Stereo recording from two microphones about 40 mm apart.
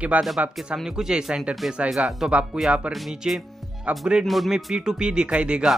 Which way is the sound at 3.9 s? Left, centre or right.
Right.